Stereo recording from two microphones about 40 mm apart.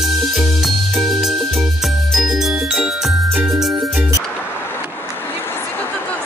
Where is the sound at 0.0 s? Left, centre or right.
Centre.